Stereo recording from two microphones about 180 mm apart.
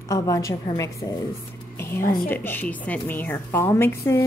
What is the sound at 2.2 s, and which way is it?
A woman's voice, 10° left (ahead or behind).